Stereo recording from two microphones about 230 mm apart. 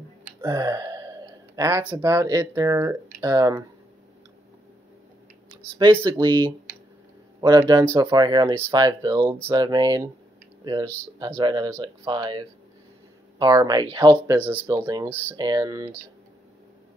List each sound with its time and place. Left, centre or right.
0.4 s a sound: centre
1.6 s speech: centre
5.8 s speech: centre